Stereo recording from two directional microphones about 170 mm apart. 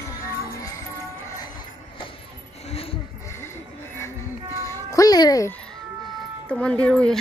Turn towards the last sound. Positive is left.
turn(degrees=5)  # may be behind; listen again after turning